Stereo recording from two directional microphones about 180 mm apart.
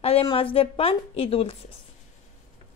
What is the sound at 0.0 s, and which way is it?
A woman's voice, 30° left (ahead or behind).